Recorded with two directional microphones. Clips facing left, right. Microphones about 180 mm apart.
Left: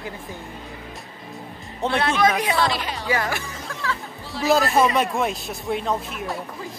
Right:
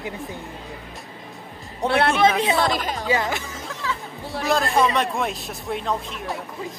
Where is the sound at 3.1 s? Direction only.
20° right (ahead or behind).